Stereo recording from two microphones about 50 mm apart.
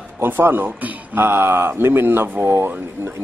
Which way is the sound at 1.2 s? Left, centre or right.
Right.